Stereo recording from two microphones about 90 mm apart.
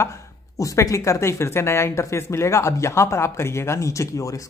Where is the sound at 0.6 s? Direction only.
40° left (ahead or behind).